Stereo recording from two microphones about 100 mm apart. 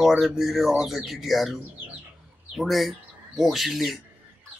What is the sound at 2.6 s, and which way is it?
Speech, centre (ahead or behind).